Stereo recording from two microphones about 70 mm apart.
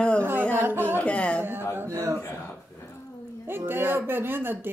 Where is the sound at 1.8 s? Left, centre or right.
Right.